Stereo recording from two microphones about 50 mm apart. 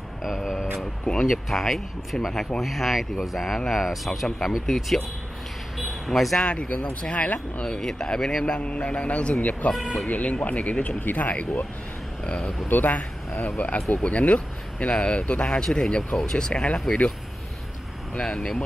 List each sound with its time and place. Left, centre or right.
0.2 s a sound: centre
1.2 s speech: centre
5.8 s a sound: centre
6.4 s speech: left
7.6 s speech: centre
8.5 s speech: left
12.6 s speech: left; by 16.8 s centre
18.2 s speech: centre